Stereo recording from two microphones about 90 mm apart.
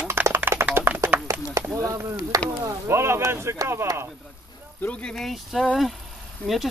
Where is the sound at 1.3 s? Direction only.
35° right (ahead or behind).